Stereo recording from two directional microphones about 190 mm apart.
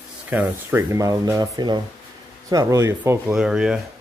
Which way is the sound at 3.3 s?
5° right (ahead or behind).